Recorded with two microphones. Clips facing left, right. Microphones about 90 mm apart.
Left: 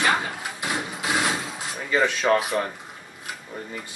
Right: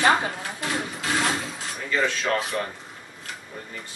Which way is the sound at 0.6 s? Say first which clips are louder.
Even; 15° left (ahead or behind).